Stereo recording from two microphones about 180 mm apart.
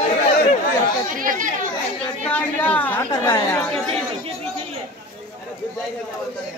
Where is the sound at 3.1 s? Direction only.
20° left (ahead or behind).